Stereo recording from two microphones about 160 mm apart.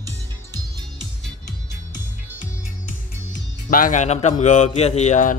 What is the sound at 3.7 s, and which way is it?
Speech, 55° left (ahead or behind).